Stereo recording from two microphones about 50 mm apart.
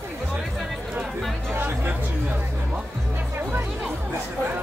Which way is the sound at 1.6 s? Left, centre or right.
Right.